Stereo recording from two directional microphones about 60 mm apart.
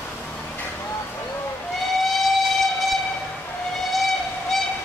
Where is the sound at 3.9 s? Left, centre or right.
Centre.